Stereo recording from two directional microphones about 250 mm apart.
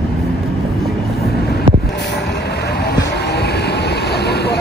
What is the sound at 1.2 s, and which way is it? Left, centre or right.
Vehicle, left.